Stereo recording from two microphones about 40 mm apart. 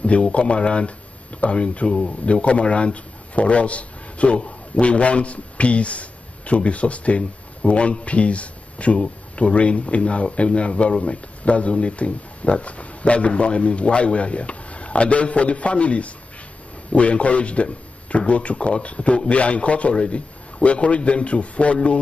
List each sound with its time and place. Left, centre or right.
0.0 s speech: left